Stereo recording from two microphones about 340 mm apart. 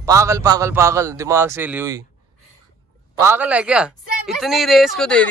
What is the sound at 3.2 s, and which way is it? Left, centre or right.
Speech, centre.